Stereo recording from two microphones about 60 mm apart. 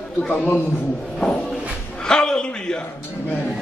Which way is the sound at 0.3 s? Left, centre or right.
Left.